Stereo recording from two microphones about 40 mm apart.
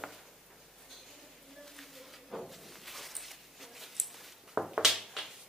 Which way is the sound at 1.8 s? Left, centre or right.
Centre.